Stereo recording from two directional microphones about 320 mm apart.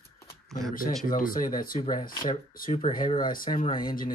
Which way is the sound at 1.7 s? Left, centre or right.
Centre.